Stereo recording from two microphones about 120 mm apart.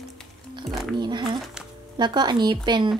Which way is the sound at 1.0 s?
40° right (ahead or behind).